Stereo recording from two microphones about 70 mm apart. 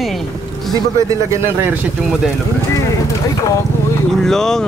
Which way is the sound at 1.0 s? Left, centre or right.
Right.